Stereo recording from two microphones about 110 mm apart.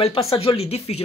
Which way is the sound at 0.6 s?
70° left (ahead or behind).